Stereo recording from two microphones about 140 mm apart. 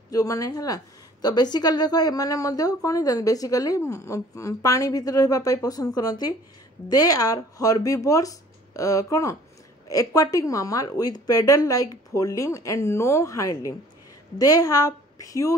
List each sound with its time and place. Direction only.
0.1 s a woman's voice: 25° left (ahead or behind)